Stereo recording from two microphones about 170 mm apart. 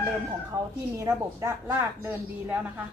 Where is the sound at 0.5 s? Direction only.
20° right (ahead or behind).